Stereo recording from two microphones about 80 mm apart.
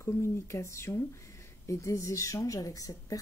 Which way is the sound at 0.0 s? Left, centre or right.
Left.